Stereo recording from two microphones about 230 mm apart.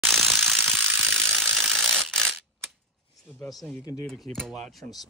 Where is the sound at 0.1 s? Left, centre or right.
Centre.